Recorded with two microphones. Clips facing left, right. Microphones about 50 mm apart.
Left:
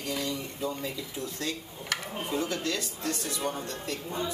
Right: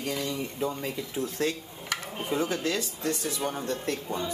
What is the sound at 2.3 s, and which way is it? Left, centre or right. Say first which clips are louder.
Speech: right 3 dB; right.